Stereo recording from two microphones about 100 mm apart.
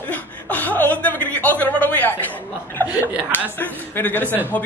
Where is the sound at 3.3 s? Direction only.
20° left (ahead or behind).